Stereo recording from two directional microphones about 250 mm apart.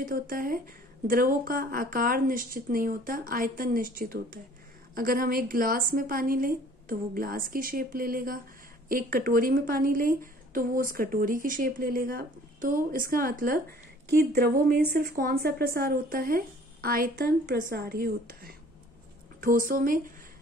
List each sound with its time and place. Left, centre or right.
0.0 s speech: right